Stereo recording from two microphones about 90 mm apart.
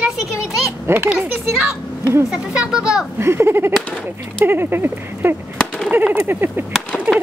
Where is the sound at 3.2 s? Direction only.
30° right (ahead or behind).